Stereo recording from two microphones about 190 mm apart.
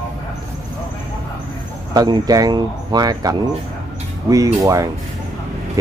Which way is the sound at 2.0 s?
20° right (ahead or behind).